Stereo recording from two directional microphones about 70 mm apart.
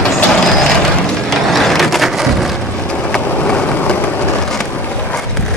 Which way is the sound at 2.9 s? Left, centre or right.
Centre.